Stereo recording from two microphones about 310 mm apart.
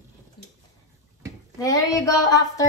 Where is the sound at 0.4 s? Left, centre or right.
Centre.